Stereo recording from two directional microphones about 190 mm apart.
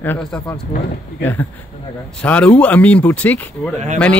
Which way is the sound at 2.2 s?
5° left (ahead or behind).